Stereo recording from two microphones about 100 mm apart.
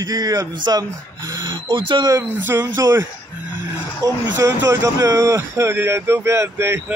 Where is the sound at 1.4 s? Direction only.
50° right (ahead or behind).